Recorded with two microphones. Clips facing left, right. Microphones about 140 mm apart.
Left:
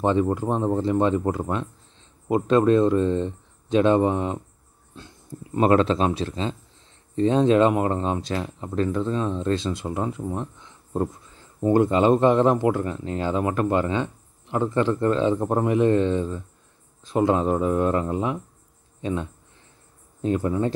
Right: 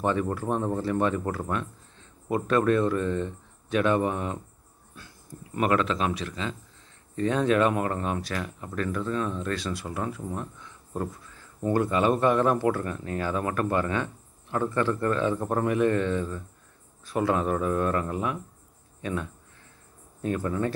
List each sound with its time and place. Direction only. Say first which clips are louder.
0.0 s speech: left 5 dB; 20° left (ahead or behind)